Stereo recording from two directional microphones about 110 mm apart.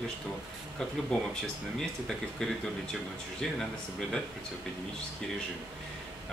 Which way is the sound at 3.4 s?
5° left (ahead or behind).